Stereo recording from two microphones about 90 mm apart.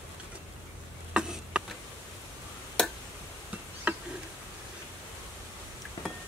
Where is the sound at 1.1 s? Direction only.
10° right (ahead or behind).